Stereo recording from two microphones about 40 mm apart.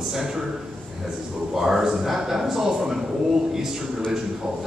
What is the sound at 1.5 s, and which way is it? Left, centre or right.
A man's voice, centre.